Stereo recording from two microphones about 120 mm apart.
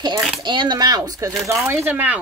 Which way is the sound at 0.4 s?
40° right (ahead or behind).